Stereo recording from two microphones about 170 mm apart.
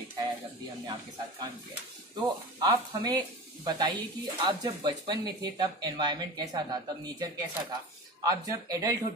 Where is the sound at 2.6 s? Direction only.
20° right (ahead or behind).